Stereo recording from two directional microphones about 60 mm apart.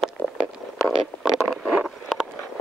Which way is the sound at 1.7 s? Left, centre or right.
Centre.